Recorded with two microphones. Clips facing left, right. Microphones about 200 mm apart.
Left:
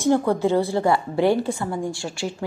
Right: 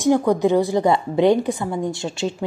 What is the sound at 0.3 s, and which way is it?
A woman's voice, 15° right (ahead or behind).